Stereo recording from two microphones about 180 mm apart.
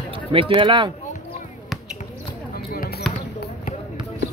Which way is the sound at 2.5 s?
55° left (ahead or behind).